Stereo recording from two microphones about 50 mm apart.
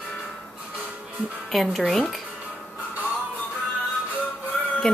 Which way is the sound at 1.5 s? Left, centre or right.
Centre.